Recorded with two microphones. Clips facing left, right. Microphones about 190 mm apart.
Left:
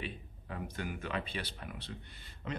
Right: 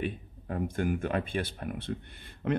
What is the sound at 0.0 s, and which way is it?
Speech, 50° right (ahead or behind).